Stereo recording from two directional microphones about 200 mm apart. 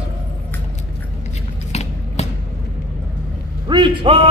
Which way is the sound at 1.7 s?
35° left (ahead or behind).